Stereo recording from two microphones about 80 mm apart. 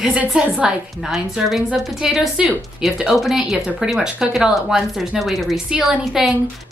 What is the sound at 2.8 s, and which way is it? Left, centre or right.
A woman's voice, centre.